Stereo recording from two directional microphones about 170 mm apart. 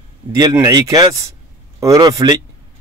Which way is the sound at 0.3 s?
20° right (ahead or behind).